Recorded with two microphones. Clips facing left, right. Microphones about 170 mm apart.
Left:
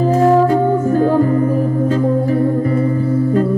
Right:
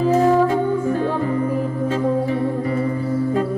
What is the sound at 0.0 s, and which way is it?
Music, 45° left (ahead or behind).